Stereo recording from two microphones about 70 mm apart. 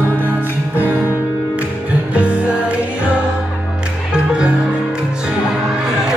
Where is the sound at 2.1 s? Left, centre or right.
Centre.